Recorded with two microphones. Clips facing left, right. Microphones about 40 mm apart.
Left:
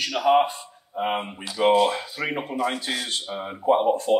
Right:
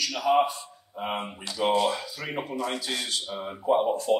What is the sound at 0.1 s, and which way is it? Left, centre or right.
A man's voice, left.